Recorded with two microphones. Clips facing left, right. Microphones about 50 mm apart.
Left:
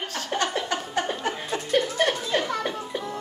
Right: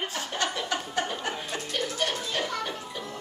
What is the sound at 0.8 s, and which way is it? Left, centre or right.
Chuckle, centre.